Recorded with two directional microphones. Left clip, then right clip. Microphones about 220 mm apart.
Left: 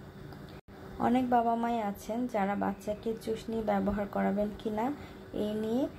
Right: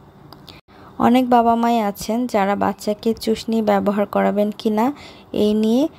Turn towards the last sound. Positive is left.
turn(degrees=-45)  # may be behind; listen again after turning